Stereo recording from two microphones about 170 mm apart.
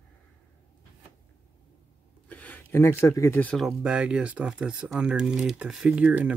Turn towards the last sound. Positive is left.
turn(degrees=-5)  # may be behind; listen again after turning